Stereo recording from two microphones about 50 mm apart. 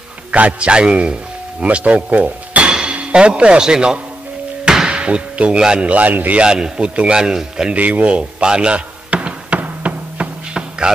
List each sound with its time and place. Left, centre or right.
0.3 s a man's voice: right
6.4 s a man's voice: centre
7.7 s a sound: right